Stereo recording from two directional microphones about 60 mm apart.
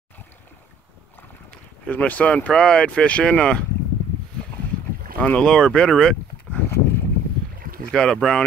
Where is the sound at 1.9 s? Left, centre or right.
Left.